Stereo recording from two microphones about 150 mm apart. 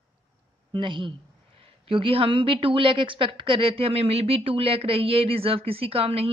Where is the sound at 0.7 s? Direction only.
35° right (ahead or behind).